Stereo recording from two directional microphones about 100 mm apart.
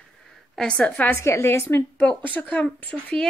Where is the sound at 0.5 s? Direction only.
10° left (ahead or behind).